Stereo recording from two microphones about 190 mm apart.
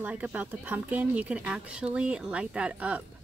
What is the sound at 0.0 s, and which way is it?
Speech, 10° right (ahead or behind).